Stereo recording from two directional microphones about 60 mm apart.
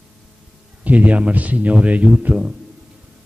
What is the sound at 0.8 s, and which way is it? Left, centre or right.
A man's voice, right.